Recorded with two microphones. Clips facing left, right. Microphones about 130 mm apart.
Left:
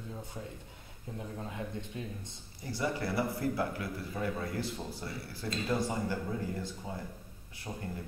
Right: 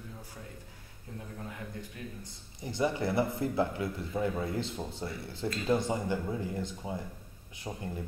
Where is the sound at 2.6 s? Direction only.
20° right (ahead or behind).